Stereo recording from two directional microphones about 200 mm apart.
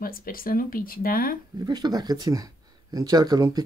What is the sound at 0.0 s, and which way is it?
Speech, 45° left (ahead or behind).